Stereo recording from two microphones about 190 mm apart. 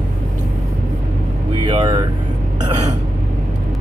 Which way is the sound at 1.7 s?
25° right (ahead or behind).